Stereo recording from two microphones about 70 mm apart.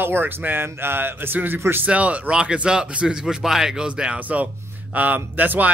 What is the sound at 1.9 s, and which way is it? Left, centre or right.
Speech, centre.